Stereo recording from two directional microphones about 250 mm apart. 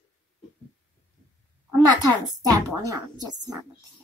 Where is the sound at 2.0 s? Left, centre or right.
Centre.